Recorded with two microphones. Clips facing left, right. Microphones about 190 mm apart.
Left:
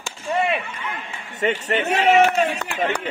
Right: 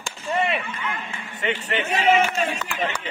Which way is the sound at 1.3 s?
45° left (ahead or behind).